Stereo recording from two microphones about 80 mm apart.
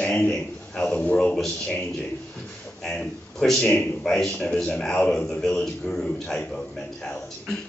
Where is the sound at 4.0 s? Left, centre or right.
Centre.